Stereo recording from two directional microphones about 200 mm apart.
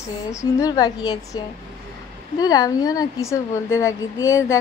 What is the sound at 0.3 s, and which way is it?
A woman's voice, 15° left (ahead or behind).